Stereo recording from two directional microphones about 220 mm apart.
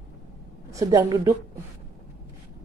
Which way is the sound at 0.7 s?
15° right (ahead or behind).